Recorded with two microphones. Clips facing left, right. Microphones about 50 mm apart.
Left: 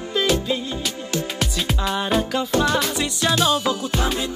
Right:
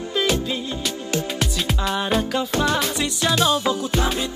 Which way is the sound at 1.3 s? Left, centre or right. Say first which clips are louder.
Even; centre.